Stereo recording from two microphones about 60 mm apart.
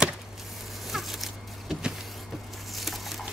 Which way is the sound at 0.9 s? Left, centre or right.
Centre.